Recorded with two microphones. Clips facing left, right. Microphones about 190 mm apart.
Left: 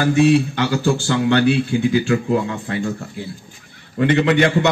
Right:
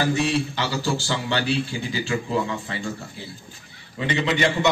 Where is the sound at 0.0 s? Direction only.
55° left (ahead or behind).